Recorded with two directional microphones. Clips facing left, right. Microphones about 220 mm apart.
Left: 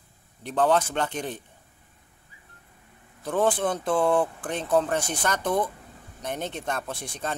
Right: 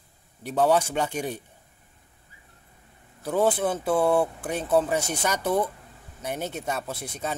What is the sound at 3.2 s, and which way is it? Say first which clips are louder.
Speech: right 1 dB; 5° right (ahead or behind).